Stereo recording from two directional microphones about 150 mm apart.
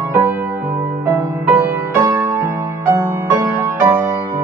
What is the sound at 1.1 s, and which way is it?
Music, 25° right (ahead or behind).